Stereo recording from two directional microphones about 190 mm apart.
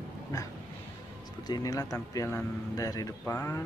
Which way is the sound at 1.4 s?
20° left (ahead or behind).